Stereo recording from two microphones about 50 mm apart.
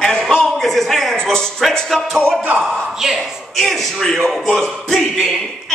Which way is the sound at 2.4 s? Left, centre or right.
Right.